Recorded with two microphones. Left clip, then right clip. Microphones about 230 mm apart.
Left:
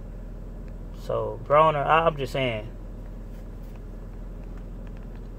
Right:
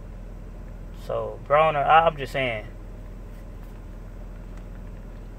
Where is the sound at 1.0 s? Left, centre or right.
Centre.